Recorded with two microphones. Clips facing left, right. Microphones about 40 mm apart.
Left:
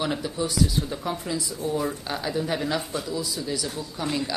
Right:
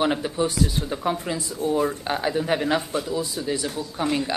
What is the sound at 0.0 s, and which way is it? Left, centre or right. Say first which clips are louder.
Speech: right 5 dB; right.